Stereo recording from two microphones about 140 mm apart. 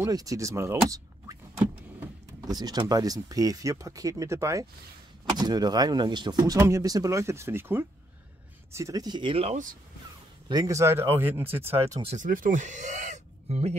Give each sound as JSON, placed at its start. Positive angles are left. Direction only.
{"t": 0.0, "sound": "speech", "side_deg": -25}
{"t": 2.4, "sound": "speech", "side_deg": -30}
{"t": 10.5, "sound": "speech", "side_deg": -25}
{"t": 12.2, "sound": "speech", "side_deg": -65}